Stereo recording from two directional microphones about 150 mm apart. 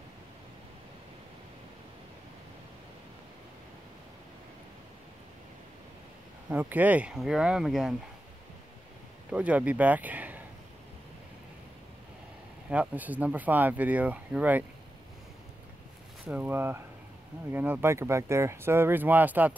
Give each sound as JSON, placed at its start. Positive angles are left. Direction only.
{"t": 6.5, "sound": "speech", "side_deg": -10}
{"t": 9.3, "sound": "speech", "side_deg": -10}
{"t": 12.6, "sound": "speech", "side_deg": -10}
{"t": 16.3, "sound": "speech", "side_deg": -10}